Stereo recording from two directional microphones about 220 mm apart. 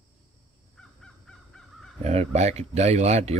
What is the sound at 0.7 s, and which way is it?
Crow, 5° left (ahead or behind).